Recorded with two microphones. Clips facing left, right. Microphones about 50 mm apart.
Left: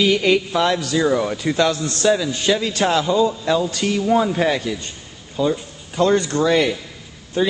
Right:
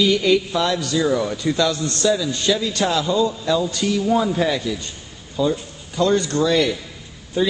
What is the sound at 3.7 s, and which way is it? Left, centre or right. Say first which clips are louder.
Speech: even; left.